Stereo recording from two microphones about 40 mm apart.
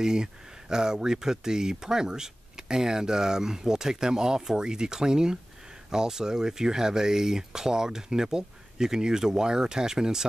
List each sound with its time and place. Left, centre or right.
0.0 s speech: centre